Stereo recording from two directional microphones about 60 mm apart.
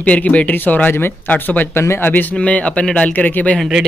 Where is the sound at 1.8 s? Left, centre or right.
Left.